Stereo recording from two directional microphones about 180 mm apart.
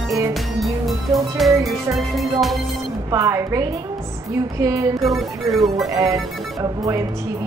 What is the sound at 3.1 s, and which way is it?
Speech, 15° right (ahead or behind).